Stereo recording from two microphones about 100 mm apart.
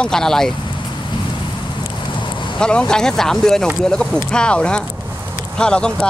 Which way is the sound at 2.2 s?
50° left (ahead or behind).